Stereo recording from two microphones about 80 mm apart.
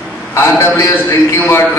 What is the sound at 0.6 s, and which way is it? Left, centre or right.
Speech, left.